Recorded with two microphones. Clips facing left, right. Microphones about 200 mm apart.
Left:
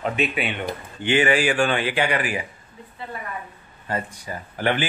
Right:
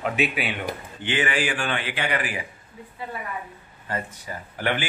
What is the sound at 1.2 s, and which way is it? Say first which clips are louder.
Speech: left 6 dB; 40° left (ahead or behind).